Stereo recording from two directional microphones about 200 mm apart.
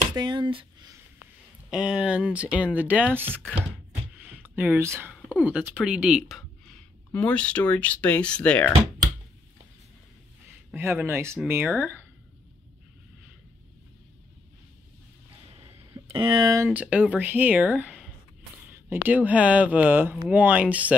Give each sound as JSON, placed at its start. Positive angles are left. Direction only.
{"t": 0.1, "sound": "speech", "side_deg": -20}
{"t": 1.7, "sound": "speech", "side_deg": -5}
{"t": 7.1, "sound": "speech", "side_deg": 5}
{"t": 10.7, "sound": "speech", "side_deg": -10}
{"t": 16.1, "sound": "speech", "side_deg": -20}